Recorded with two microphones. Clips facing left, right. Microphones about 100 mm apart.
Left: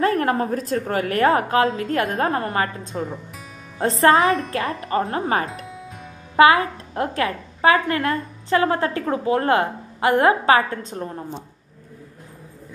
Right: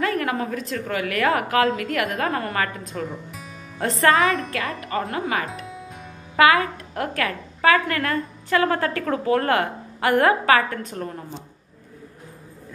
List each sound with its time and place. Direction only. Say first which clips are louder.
0.0 s a woman's voice: left 4 dB; 35° left (ahead or behind)
5.7 s music: even; centre (ahead or behind)
6.3 s a woman's voice: left 3 dB; 30° left (ahead or behind)